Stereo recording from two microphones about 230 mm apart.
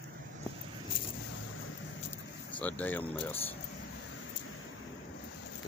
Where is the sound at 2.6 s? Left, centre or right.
Centre.